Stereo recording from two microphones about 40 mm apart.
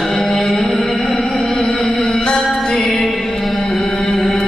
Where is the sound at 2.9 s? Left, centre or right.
Centre.